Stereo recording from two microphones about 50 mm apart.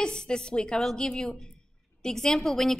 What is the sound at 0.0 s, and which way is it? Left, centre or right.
A woman's voice, centre.